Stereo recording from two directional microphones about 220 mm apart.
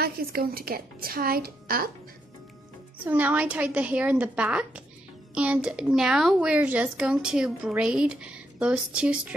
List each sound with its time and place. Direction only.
0.0 s a woman's voice: 40° right (ahead or behind)
3.1 s a woman's voice: 5° right (ahead or behind)